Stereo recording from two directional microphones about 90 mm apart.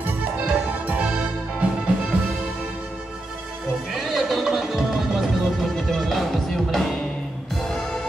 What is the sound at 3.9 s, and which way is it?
Music, 5° right (ahead or behind).